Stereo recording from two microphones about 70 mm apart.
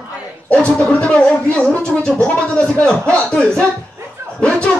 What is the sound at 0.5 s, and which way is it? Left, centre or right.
Speech, centre.